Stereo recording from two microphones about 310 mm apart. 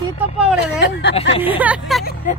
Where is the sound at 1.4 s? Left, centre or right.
Centre.